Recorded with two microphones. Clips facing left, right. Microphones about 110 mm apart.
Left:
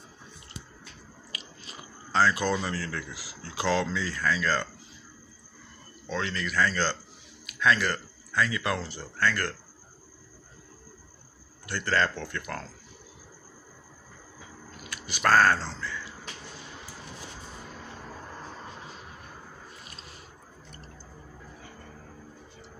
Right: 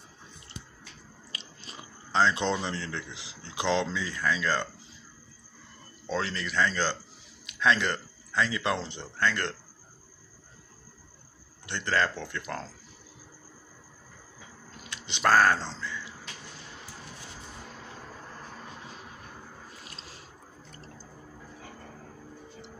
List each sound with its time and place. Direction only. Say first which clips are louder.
1.3 s squish: even; 30° right (ahead or behind)
2.1 s speech: left 1 dB; 25° right (ahead or behind)
6.0 s speech: even; 35° right (ahead or behind)
11.6 s speech: left 1 dB; 20° right (ahead or behind)
14.8 s a sound: even; 25° right (ahead or behind)
15.3 s speech: left 1 dB; 15° right (ahead or behind)
19.8 s squish: even; 90° right